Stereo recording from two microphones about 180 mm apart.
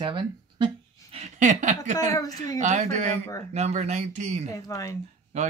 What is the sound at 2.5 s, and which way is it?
Speech, 40° right (ahead or behind).